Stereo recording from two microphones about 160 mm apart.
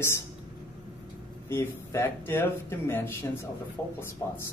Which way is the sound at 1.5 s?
15° left (ahead or behind).